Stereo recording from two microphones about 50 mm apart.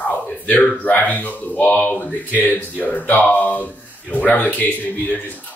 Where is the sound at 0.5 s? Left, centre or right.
Left.